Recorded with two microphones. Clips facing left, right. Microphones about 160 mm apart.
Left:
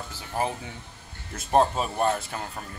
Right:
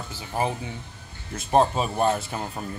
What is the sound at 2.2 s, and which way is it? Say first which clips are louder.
Speech: right 3 dB; 20° right (ahead or behind).